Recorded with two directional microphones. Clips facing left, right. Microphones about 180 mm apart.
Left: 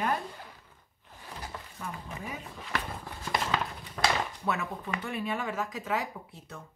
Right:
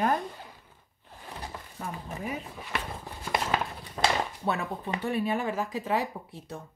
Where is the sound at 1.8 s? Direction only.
35° right (ahead or behind).